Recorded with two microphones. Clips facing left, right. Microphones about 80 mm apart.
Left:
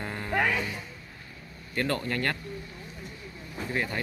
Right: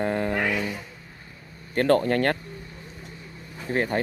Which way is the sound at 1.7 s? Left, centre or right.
Right.